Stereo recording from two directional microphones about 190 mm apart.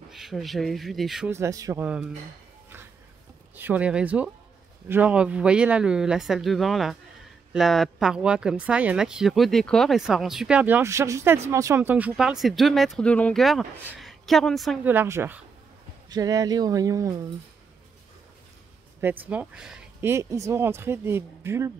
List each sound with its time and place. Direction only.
0.1 s speech: centre (ahead or behind)
1.3 s speech: 15° right (ahead or behind)
3.5 s speech: 10° right (ahead or behind)
14.9 s speech: 10° right (ahead or behind)
18.9 s speech: 10° right (ahead or behind)